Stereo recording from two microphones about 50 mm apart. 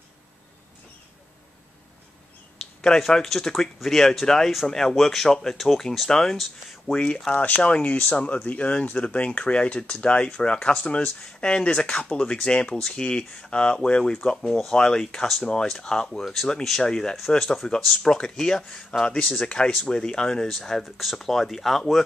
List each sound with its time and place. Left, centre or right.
2.8 s speech: centre
7.3 s speech: left
7.6 s speech: left; by 18.6 s centre
18.9 s speech: left; by 22.0 s centre